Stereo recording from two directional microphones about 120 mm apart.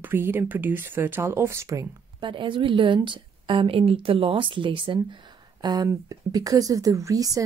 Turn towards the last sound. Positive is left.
turn(degrees=-30)  # may be behind; listen again after turning